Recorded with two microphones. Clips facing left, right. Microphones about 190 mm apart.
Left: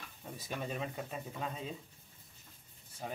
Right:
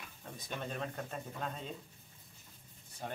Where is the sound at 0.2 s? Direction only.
5° left (ahead or behind).